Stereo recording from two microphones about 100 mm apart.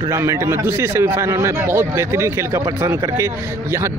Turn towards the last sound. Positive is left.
turn(degrees=-25)  # may be behind; listen again after turning